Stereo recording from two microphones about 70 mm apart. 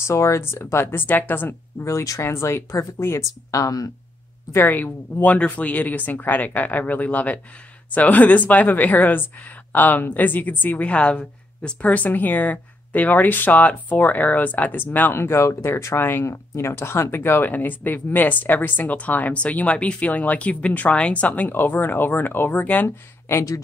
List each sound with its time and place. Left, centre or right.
0.0 s speech: left
1.8 s speech: left
3.5 s speech: left
4.5 s a woman's voice: left
22.8 s speech: left